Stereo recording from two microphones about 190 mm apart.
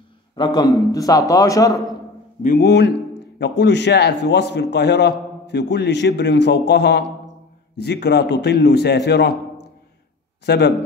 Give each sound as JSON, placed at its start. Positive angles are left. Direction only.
{"t": 0.4, "sound": "a man's voice", "side_deg": 20}
{"t": 2.4, "sound": "a man's voice", "side_deg": 55}
{"t": 10.4, "sound": "a man's voice", "side_deg": 65}